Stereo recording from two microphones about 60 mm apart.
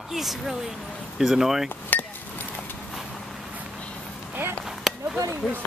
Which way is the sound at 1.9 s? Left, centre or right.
Left.